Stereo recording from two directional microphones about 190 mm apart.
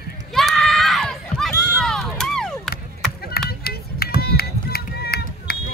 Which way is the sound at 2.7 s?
55° left (ahead or behind).